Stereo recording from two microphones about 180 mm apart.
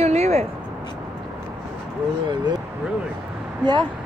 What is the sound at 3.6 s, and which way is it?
Speech, 25° right (ahead or behind).